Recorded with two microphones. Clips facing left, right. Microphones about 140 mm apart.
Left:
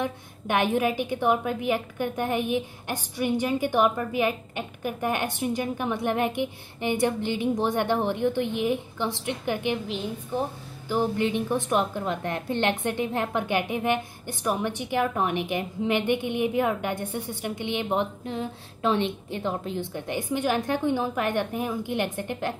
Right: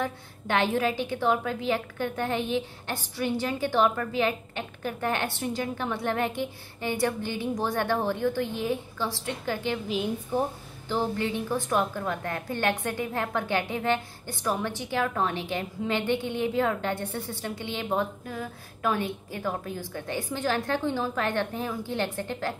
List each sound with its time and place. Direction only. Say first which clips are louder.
0.0 s a woman's voice: left 2 dB; 15° left (ahead or behind)
10.9 s a woman's voice: left 3 dB; 15° left (ahead or behind)